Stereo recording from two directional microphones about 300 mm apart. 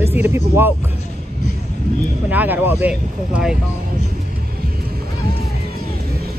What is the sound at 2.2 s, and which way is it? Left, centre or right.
Speech, centre.